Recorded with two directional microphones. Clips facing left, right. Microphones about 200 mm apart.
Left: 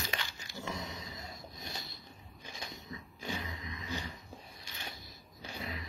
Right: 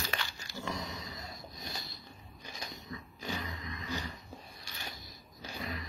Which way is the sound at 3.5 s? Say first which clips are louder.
Right 1 dB; 20° left (ahead or behind).